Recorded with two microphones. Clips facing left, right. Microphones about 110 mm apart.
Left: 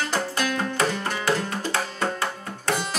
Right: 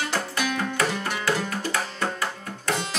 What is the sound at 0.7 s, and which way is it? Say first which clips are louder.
Music: left 1 dB; 25° left (ahead or behind).